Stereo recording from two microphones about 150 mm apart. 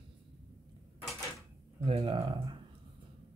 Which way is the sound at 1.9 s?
40° right (ahead or behind).